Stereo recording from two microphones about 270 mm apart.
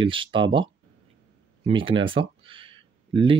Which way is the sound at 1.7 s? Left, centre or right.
Centre.